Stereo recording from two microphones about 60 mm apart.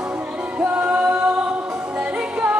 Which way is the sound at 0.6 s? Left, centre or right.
Right.